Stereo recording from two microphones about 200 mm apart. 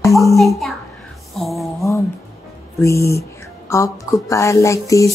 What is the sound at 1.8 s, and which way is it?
Speech, 15° left (ahead or behind).